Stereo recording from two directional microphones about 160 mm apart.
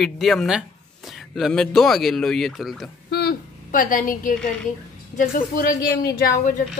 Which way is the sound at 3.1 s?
90° left.